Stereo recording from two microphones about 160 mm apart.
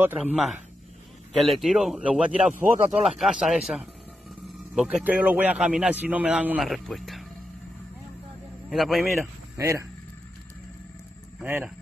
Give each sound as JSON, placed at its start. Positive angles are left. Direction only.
{"t": 0.0, "sound": "speech", "side_deg": -10}
{"t": 8.6, "sound": "speech", "side_deg": 0}
{"t": 9.6, "sound": "speech", "side_deg": -20}
{"t": 11.4, "sound": "speech", "side_deg": -10}